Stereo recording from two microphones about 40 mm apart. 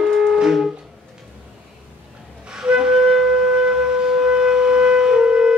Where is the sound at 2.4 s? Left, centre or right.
Centre.